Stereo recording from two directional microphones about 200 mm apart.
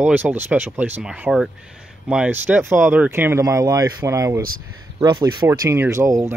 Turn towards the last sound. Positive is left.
turn(degrees=-15)  # may be behind; listen again after turning